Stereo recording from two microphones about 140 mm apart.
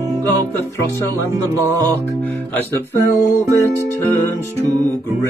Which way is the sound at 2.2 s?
10° left (ahead or behind).